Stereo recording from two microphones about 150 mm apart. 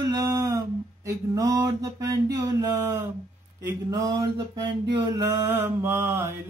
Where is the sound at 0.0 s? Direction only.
25° right (ahead or behind).